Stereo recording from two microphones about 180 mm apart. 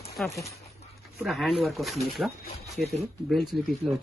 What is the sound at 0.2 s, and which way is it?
A woman's voice, 5° left (ahead or behind).